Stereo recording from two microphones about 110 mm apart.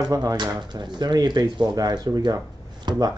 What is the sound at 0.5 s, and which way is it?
Speech, 40° right (ahead or behind).